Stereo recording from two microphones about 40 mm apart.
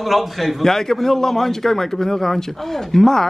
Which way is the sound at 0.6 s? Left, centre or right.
Centre.